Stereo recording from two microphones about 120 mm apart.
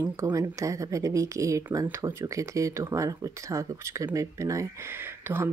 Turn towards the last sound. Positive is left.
turn(degrees=-20)  # may be behind; listen again after turning